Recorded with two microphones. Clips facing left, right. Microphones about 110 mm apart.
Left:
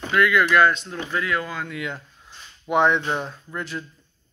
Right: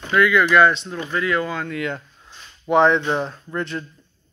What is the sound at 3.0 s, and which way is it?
Speech, 25° right (ahead or behind).